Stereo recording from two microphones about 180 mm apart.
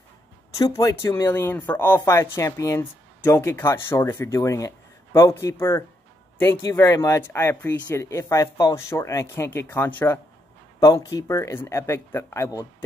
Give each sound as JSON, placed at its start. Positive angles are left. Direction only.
{"t": 0.6, "sound": "speech", "side_deg": 20}